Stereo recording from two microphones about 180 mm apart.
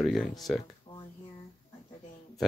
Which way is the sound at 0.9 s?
30° left (ahead or behind).